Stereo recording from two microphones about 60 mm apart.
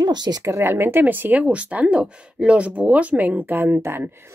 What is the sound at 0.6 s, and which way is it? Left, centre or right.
Speech, right.